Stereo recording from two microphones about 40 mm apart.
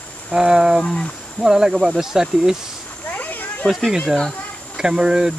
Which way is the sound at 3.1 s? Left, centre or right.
Left.